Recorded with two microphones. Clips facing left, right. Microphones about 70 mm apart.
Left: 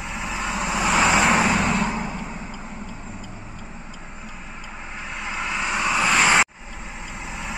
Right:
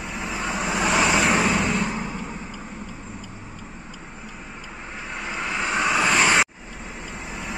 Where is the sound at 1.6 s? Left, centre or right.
Left.